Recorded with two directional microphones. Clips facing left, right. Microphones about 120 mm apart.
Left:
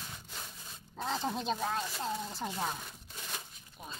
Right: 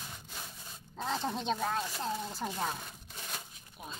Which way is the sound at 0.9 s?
Centre (ahead or behind).